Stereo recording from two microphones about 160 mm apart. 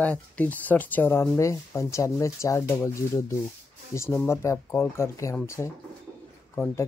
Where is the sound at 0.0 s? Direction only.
10° left (ahead or behind).